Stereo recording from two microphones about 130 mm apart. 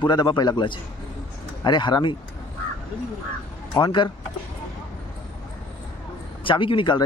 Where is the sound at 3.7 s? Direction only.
35° left (ahead or behind).